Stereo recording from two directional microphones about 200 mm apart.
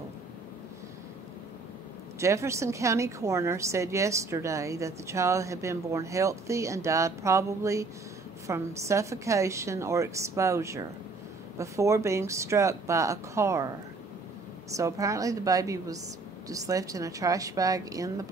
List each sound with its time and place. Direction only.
2.1 s a woman's voice: 15° right (ahead or behind)
14.7 s a woman's voice: 15° right (ahead or behind)